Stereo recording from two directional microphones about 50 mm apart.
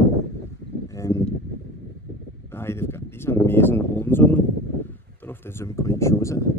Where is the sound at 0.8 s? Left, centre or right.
Left.